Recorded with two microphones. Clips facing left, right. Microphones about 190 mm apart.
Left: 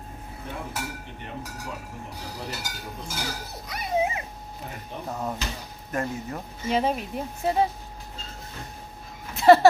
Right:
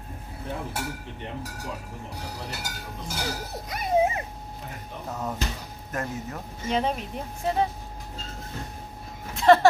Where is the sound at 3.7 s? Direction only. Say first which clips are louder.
Right 3 dB; 45° right (ahead or behind).